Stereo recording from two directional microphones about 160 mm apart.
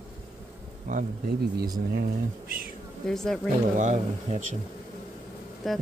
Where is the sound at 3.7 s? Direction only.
50° right (ahead or behind).